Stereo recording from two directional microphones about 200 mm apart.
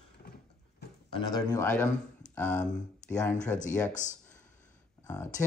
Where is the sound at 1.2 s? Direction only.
20° left (ahead or behind).